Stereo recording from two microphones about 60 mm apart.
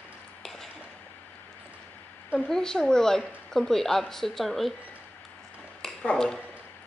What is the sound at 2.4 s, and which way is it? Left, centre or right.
Speech, centre.